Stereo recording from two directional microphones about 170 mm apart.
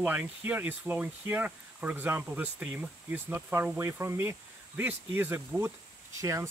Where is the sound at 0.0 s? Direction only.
10° right (ahead or behind).